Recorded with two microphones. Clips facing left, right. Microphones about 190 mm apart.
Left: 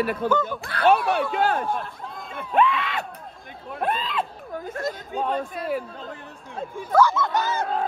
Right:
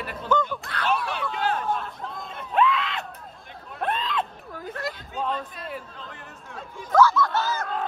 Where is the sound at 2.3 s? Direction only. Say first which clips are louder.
Left 2 dB; 55° left (ahead or behind).